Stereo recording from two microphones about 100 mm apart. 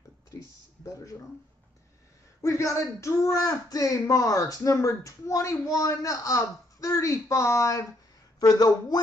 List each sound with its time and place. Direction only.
2.4 s speech: 30° left (ahead or behind)